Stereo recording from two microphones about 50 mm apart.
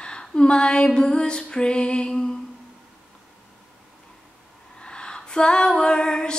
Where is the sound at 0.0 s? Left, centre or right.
Centre.